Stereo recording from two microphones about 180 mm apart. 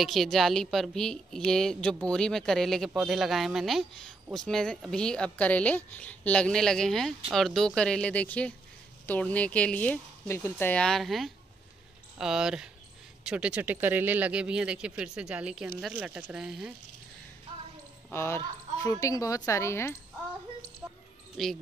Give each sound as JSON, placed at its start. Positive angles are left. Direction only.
{"t": 0.0, "sound": "speech", "side_deg": 0}
{"t": 18.1, "sound": "speech", "side_deg": 15}
{"t": 21.4, "sound": "speech", "side_deg": 0}